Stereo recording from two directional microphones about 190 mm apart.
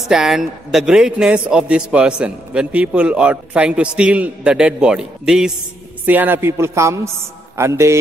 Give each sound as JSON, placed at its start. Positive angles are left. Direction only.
{"t": 0.1, "sound": "a man's voice", "side_deg": -5}